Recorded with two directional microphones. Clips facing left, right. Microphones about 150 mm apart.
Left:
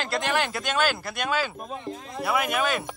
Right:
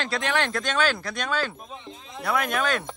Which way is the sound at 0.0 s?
5° left (ahead or behind).